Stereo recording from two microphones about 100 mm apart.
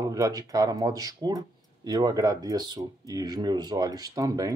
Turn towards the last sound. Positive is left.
turn(degrees=-35)  # may be behind; listen again after turning